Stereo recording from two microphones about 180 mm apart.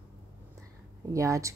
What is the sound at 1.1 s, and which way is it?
Speech, 15° right (ahead or behind).